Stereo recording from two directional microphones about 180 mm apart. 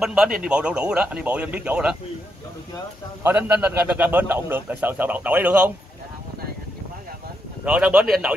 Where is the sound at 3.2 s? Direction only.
10° right (ahead or behind).